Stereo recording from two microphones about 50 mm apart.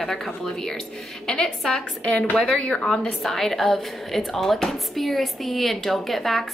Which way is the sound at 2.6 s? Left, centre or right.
Left.